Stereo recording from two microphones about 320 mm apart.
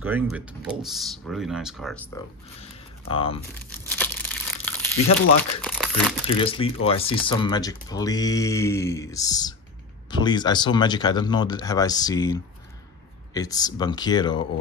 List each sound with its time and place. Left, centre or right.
0.0 s speech: centre
2.6 s speech: centre
4.0 s crumpling: centre
5.4 s speech: centre
6.2 s speech: centre